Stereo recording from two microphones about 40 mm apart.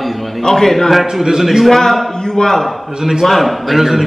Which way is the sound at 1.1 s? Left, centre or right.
Centre.